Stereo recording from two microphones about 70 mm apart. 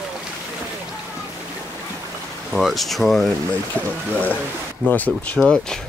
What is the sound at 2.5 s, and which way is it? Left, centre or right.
Speech, centre.